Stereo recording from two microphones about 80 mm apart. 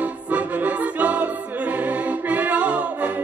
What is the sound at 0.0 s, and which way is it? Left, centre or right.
Music, centre.